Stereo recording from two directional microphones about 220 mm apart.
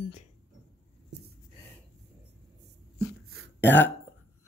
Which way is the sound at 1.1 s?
50° right (ahead or behind).